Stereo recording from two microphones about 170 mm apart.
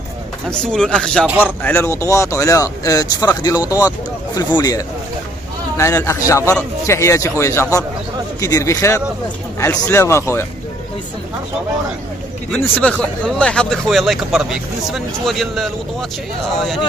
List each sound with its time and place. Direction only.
0.5 s speech: 5° left (ahead or behind)
12.4 s speech: 5° left (ahead or behind)